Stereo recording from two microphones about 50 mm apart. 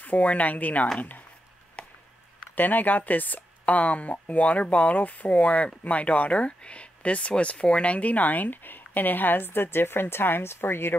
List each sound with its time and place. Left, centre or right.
0.0 s speech: left
1.8 s a sound: left
2.5 s speech: left